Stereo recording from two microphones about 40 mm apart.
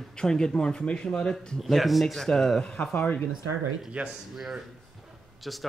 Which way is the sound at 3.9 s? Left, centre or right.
Right.